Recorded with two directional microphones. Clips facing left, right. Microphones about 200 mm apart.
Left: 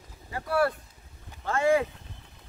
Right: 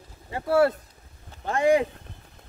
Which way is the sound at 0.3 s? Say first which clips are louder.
Right 5 dB; 25° right (ahead or behind).